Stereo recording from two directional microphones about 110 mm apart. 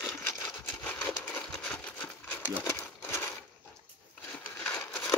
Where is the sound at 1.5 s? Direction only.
10° left (ahead or behind).